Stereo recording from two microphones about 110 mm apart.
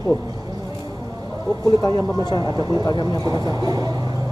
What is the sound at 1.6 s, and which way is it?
Speech, 35° left (ahead or behind).